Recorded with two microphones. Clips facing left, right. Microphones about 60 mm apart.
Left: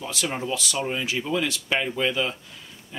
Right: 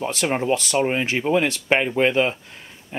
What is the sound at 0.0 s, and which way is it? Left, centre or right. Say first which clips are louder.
Speech: right 6 dB; right.